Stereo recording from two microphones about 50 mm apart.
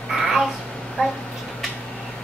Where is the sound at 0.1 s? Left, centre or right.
Centre.